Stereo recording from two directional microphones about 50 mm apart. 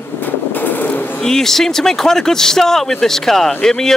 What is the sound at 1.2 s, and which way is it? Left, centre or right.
Speech, centre.